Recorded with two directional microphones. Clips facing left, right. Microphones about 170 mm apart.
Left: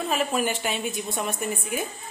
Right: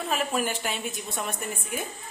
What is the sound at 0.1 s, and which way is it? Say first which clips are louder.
Speech: left 2 dB; centre (ahead or behind).